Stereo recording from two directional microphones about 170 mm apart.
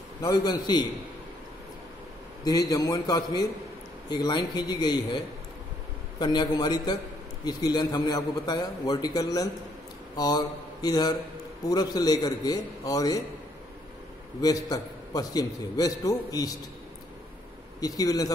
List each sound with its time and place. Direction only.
0.2 s a man's voice: 20° left (ahead or behind)
2.4 s a man's voice: 20° left (ahead or behind)
6.1 s a man's voice: 25° left (ahead or behind)
14.4 s a man's voice: 25° left (ahead or behind)
17.7 s a man's voice: 20° left (ahead or behind)